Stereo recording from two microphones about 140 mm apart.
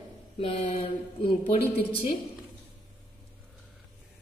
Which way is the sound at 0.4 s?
45° left (ahead or behind).